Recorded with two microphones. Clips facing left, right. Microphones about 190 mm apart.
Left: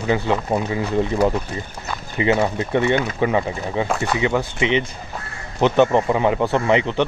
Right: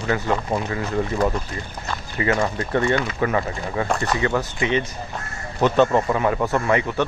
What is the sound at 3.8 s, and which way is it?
Speech, 5° left (ahead or behind).